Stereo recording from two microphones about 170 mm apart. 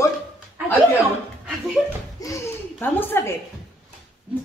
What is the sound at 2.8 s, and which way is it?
Speech, 10° left (ahead or behind).